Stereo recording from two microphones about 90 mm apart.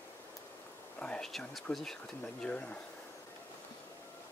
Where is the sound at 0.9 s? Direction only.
10° left (ahead or behind).